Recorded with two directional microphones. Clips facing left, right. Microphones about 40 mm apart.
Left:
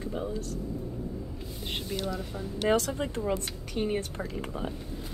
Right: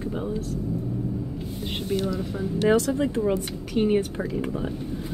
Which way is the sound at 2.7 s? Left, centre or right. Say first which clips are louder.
Right 4 dB; centre.